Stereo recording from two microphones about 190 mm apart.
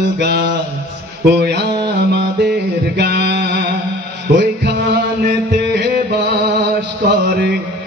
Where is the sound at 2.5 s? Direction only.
60° right (ahead or behind).